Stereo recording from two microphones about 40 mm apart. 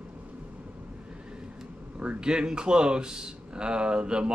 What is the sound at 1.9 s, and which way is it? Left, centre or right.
Speech, right.